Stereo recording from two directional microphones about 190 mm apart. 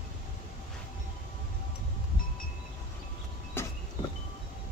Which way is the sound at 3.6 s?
10° left (ahead or behind).